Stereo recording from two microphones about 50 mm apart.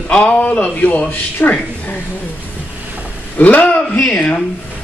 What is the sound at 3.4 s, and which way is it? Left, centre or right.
Speech, left.